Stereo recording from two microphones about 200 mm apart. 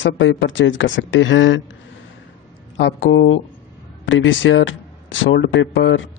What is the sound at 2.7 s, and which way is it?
Speech, 65° left (ahead or behind).